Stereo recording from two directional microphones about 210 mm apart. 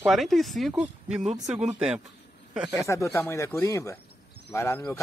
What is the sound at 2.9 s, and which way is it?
Speech, 15° left (ahead or behind).